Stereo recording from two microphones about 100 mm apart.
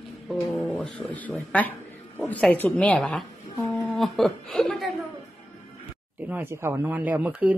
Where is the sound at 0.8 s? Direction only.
10° left (ahead or behind).